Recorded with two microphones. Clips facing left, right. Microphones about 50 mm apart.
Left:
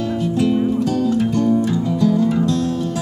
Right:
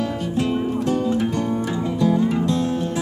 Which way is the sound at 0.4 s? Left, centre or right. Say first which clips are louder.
Left 4 dB; right.